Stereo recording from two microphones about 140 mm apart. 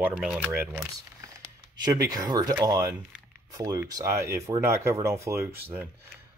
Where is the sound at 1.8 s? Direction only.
30° right (ahead or behind).